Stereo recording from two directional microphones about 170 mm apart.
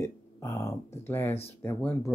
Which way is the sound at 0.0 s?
20° left (ahead or behind).